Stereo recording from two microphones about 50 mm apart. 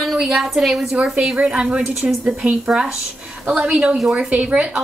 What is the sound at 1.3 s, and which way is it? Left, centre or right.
Speech, right.